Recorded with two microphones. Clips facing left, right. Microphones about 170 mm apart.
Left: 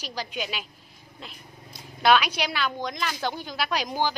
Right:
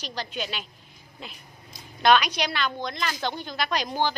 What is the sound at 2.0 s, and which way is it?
A woman's voice, 5° left (ahead or behind).